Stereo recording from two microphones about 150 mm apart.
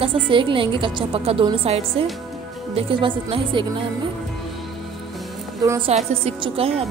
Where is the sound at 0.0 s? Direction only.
35° right (ahead or behind).